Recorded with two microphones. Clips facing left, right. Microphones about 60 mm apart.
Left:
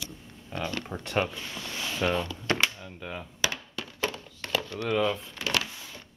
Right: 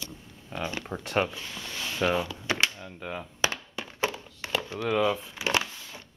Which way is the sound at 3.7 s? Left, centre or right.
Right.